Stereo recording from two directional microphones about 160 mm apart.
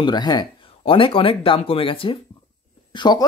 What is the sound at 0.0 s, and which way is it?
Speech, 25° left (ahead or behind).